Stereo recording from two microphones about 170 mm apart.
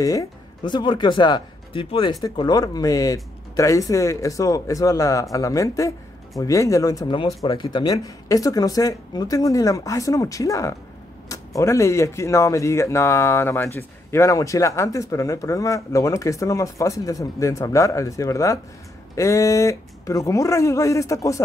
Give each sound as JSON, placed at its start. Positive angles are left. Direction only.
{"t": 0.7, "sound": "speech", "side_deg": 25}